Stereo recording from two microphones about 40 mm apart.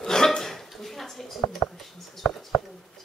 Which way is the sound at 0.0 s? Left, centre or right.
Centre.